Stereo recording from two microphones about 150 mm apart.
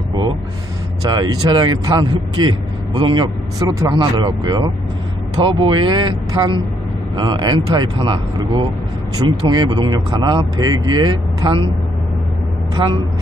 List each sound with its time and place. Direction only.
1.1 s speech: 30° right (ahead or behind)